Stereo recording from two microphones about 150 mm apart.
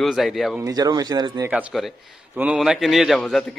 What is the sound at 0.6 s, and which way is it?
Speech, 25° right (ahead or behind).